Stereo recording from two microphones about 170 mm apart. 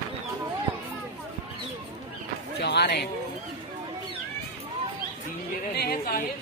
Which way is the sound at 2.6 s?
75° left (ahead or behind).